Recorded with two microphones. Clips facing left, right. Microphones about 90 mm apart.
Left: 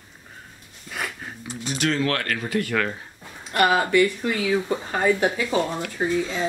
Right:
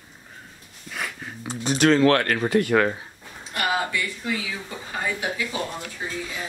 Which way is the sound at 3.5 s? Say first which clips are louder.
Left 6 dB; 55° left (ahead or behind).